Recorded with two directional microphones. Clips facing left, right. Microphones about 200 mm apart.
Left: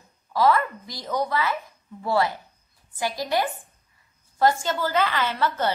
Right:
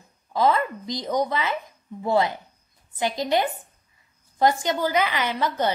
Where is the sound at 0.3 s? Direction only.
20° right (ahead or behind).